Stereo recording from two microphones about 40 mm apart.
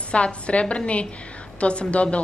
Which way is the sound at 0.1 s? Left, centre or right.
Left.